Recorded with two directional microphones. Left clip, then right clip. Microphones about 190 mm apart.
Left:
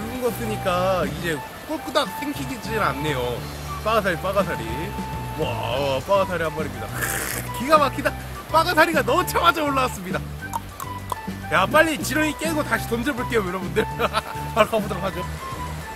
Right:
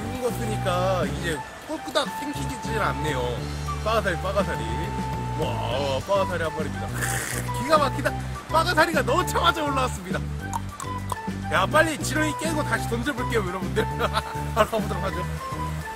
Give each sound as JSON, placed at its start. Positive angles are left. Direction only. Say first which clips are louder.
{"t": 0.2, "sound": "speech", "louder": "left 3 dB", "side_deg": -5}